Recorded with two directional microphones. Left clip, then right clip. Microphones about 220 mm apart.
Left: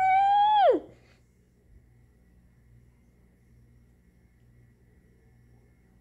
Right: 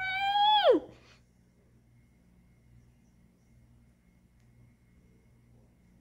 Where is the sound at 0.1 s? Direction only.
10° right (ahead or behind).